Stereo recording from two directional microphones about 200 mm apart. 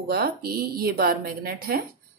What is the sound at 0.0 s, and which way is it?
Speech, 50° right (ahead or behind).